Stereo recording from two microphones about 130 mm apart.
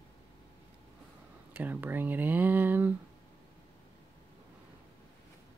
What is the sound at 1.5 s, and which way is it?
Speech, 15° right (ahead or behind).